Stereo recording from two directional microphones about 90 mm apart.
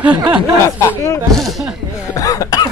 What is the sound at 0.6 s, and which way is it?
Speech, 35° left (ahead or behind).